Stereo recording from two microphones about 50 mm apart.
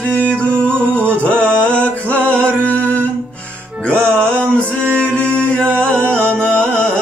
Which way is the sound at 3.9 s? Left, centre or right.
Left.